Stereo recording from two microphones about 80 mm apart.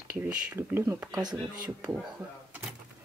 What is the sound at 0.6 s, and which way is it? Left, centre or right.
Speech, right.